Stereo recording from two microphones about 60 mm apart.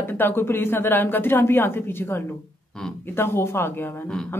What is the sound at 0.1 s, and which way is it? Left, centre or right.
Speech, left.